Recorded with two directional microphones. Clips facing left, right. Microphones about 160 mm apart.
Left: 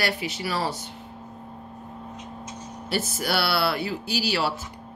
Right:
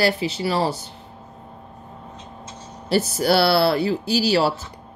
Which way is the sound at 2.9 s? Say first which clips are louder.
Right 8 dB; 35° right (ahead or behind).